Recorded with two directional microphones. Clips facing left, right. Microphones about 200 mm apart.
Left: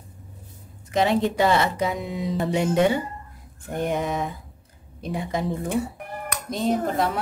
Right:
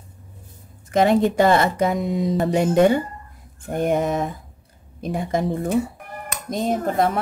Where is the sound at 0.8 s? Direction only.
50° right (ahead or behind).